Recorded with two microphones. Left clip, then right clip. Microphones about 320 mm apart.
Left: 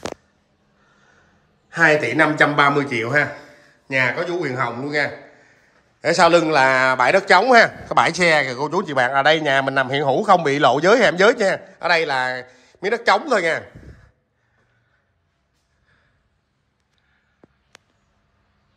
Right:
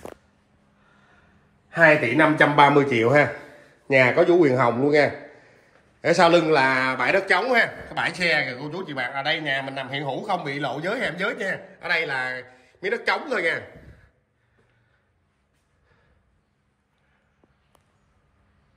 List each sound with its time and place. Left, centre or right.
1.7 s a man's voice: centre
5.9 s a man's voice: centre
8.9 s a man's voice: left
11.1 s a man's voice: centre